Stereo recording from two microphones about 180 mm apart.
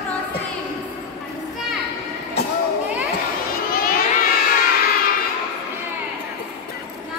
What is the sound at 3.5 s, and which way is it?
Crowd, 55° left (ahead or behind).